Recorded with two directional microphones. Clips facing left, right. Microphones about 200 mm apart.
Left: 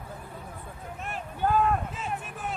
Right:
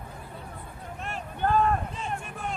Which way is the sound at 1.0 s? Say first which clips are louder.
Even; 5° left (ahead or behind).